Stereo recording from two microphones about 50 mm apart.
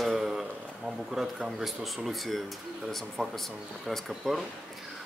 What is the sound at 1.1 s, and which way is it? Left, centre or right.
A man's voice, centre.